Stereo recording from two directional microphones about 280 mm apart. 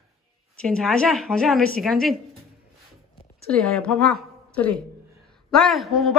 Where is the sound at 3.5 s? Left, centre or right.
Centre.